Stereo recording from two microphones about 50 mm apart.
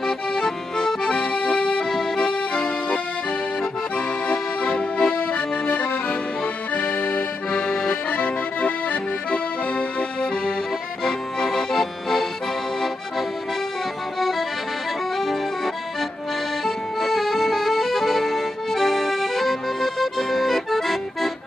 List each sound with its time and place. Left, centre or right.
0.0 s accordion: centre
1.9 s accordion: centre; by 7.2 s left
7.5 s accordion: left
11.1 s accordion: centre
15.1 s accordion: centre